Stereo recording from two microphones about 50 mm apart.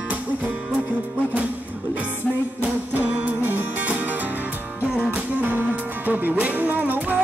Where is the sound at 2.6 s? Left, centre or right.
Right.